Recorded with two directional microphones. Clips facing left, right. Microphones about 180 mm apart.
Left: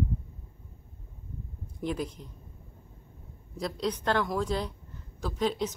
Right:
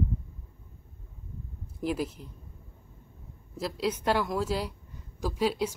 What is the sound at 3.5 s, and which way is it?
Speech, 5° right (ahead or behind).